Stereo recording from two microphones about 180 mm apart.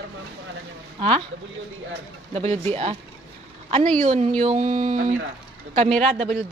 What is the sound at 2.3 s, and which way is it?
Speech, 35° right (ahead or behind).